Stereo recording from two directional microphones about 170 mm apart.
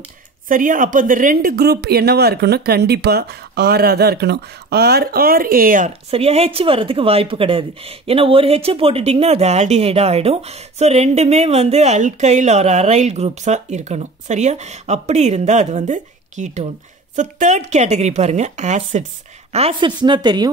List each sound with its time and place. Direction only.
0.5 s speech: 50° right (ahead or behind)
6.0 s speech: 35° right (ahead or behind)
19.5 s a woman's voice: 35° right (ahead or behind)